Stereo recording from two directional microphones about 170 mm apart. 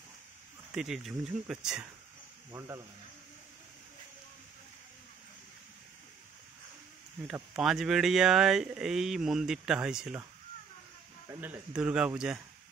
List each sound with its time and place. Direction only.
0.7 s speech: centre (ahead or behind)
2.5 s speech: 15° right (ahead or behind)
7.5 s speech: centre (ahead or behind)
11.2 s speech: 15° right (ahead or behind)